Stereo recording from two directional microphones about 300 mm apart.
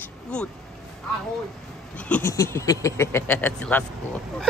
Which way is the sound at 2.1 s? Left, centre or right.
Centre.